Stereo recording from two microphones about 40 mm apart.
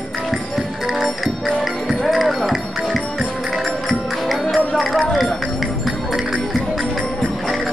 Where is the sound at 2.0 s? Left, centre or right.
Centre.